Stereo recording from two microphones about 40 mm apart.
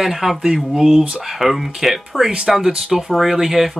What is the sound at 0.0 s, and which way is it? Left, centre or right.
Speech, centre.